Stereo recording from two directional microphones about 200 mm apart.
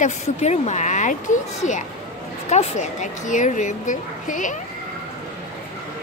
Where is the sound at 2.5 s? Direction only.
35° left (ahead or behind).